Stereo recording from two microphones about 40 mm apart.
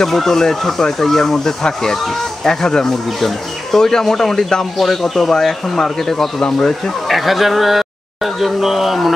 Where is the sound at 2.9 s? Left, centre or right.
Centre.